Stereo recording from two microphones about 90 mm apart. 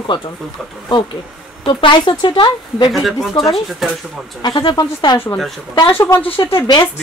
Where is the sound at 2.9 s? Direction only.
Centre (ahead or behind).